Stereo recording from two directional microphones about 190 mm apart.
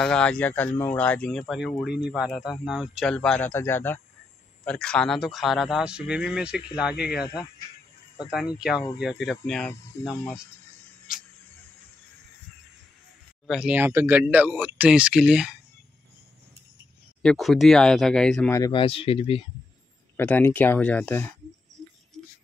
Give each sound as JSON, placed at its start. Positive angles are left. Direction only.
{"t": 0.0, "sound": "speech", "side_deg": 5}
{"t": 8.5, "sound": "speech", "side_deg": -5}
{"t": 10.0, "sound": "speech", "side_deg": 15}
{"t": 13.5, "sound": "speech", "side_deg": -5}
{"t": 17.2, "sound": "speech", "side_deg": 0}
{"t": 18.5, "sound": "speech", "side_deg": 20}
{"t": 20.2, "sound": "speech", "side_deg": 10}